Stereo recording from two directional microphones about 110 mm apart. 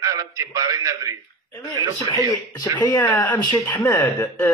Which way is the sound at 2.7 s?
15° left (ahead or behind).